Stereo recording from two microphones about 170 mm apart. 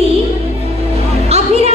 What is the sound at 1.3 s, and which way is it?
Music, 40° right (ahead or behind).